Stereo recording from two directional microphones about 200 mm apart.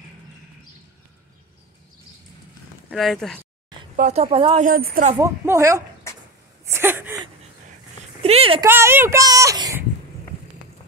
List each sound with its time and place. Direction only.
2.9 s speech: centre (ahead or behind)
3.9 s speech: 35° right (ahead or behind)
4.6 s a woman's voice: 45° right (ahead or behind)
5.1 s a woman's voice: 15° right (ahead or behind)
8.2 s a sound: 30° right (ahead or behind)
8.6 s a child's voice: 10° right (ahead or behind)